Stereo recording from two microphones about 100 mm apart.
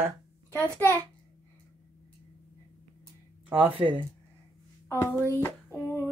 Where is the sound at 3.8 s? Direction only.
60° right (ahead or behind).